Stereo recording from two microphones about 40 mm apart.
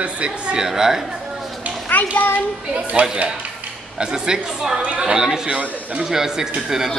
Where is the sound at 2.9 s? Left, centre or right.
Right.